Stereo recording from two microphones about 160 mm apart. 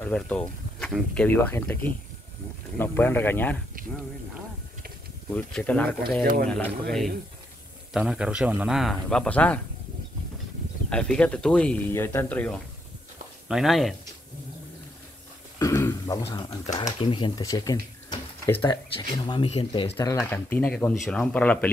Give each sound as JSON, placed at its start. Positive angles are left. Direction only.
{"t": 0.0, "sound": "speech", "side_deg": 10}
{"t": 5.3, "sound": "a man's voice", "side_deg": 10}
{"t": 10.9, "sound": "speech", "side_deg": 5}
{"t": 13.5, "sound": "a man's voice", "side_deg": 0}
{"t": 15.6, "sound": "a sound", "side_deg": 20}
{"t": 16.4, "sound": "speech", "side_deg": 45}
{"t": 17.0, "sound": "speech", "side_deg": 30}
{"t": 20.0, "sound": "speech", "side_deg": 15}